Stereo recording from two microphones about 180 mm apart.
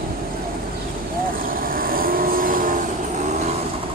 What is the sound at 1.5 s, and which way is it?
Vehicle, 55° right (ahead or behind).